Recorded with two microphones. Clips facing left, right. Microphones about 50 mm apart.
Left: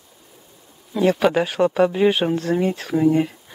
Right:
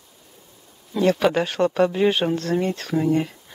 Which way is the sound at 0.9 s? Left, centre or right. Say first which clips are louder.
Left 1 dB; centre.